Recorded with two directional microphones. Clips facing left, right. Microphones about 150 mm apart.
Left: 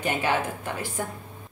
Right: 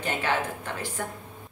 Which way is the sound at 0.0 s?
15° left (ahead or behind).